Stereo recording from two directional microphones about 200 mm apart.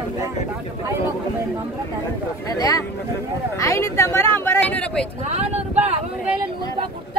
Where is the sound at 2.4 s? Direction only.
20° left (ahead or behind).